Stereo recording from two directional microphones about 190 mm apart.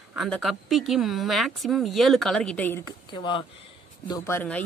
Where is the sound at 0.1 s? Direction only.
Centre (ahead or behind).